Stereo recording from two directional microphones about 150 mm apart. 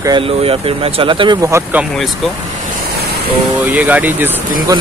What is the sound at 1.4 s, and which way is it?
Speech, 20° right (ahead or behind).